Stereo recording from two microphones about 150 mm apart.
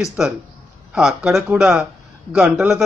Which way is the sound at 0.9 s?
5° right (ahead or behind).